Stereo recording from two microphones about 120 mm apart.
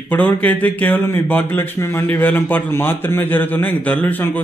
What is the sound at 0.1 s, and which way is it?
Speech, 15° left (ahead or behind).